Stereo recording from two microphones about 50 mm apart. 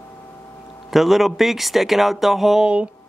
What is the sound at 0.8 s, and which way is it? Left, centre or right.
Speech, centre.